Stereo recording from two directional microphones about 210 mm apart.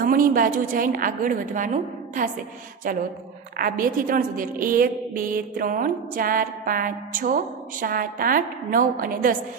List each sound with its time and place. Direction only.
0.0 s a woman's voice: 40° right (ahead or behind)
3.5 s a woman's voice: 45° right (ahead or behind)